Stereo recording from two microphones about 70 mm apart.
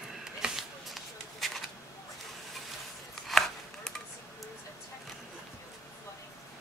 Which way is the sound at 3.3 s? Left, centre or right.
Centre.